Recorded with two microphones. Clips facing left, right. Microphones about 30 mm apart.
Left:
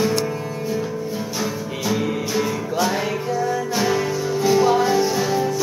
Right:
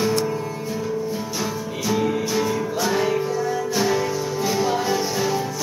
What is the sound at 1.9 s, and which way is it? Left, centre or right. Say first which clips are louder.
Music: right 1 dB; centre.